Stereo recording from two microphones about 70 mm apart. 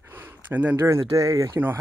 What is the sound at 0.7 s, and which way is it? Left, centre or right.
Speech, right.